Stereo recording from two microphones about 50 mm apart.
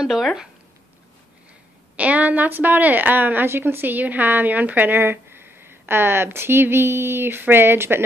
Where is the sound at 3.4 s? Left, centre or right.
Right.